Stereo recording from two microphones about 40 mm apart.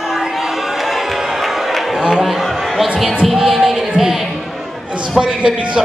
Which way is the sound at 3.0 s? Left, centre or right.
Centre.